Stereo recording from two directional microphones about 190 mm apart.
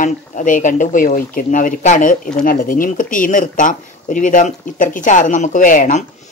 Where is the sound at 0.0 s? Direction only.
40° left (ahead or behind).